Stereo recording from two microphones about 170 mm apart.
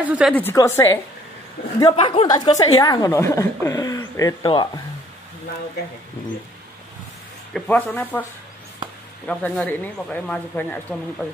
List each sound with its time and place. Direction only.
0.0 s a woman's voice: 10° right (ahead or behind)
0.3 s speech: 10° left (ahead or behind)
1.8 s a woman's voice: 25° left (ahead or behind)
7.5 s speech: 5° left (ahead or behind)
9.3 s speech: 5° left (ahead or behind)